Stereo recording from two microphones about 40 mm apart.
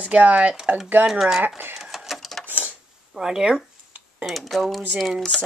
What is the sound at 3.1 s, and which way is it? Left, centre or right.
Speech, centre.